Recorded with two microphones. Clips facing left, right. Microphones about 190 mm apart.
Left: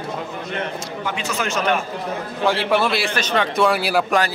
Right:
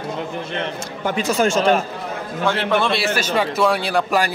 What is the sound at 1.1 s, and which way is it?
Speech, 35° right (ahead or behind).